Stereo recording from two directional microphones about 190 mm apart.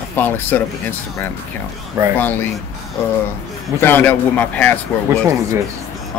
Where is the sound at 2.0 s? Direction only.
20° right (ahead or behind).